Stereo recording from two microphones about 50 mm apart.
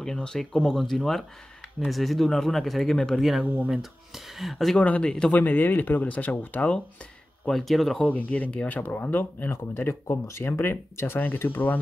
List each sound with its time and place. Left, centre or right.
0.0 s speech: centre
3.2 s speech: centre
4.7 s speech: left
5.0 s speech: centre
5.3 s speech: left
7.4 s speech: centre
8.0 s speech: left
11.3 s speech: left